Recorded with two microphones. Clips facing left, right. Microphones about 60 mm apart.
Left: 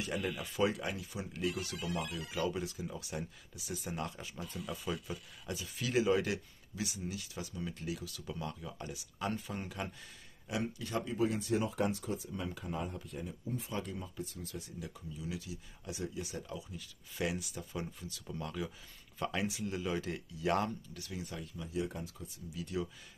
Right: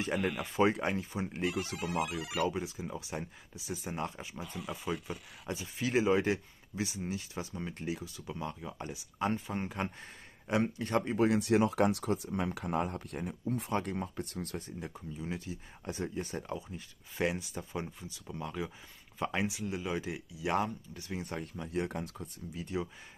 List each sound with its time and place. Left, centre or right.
0.0 s speech: right
1.8 s speech: right
2.3 s speech: right
10.5 s speech: right
14.8 s speech: right; by 20.7 s centre
20.9 s speech: right
21.2 s speech: right
22.5 s speech: right